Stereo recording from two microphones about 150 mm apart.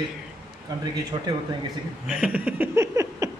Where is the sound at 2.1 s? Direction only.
10° right (ahead or behind).